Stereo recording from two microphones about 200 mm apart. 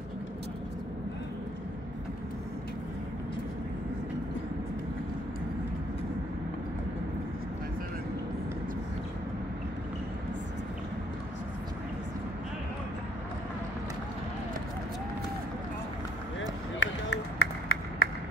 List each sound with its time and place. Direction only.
16.3 s run: 65° left (ahead or behind)